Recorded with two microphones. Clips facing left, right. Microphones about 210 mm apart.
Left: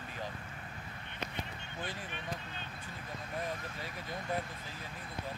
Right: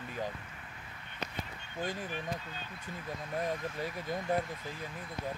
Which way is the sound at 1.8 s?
40° right (ahead or behind).